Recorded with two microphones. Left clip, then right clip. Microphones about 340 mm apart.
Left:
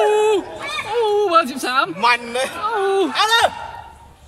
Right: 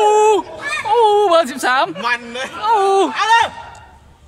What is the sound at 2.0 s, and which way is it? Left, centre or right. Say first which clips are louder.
Speech: left 3 dB; centre.